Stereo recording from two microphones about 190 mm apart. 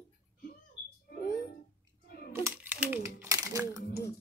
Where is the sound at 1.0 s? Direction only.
55° left (ahead or behind).